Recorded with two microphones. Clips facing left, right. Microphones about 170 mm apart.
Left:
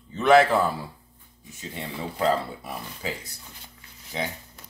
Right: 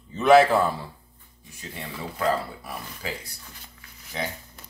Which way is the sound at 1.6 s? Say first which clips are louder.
Left 2 dB; 20° left (ahead or behind).